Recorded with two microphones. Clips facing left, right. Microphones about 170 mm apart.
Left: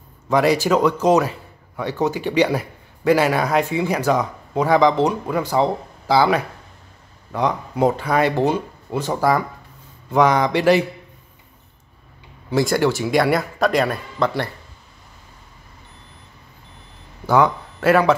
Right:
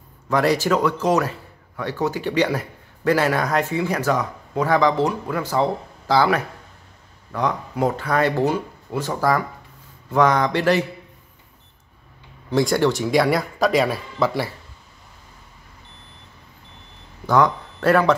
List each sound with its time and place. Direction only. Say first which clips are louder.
0.3 s speech: left 2 dB; 15° left (ahead or behind)
7.3 s speech: left 2 dB; 20° left (ahead or behind)
12.4 s speech: even; centre (ahead or behind)
17.3 s speech: left 1 dB; 5° left (ahead or behind)